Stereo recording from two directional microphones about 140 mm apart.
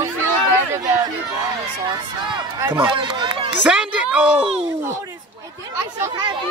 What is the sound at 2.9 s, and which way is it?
Speech, 35° right (ahead or behind).